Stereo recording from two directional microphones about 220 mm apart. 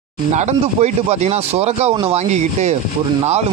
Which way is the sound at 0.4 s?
30° right (ahead or behind).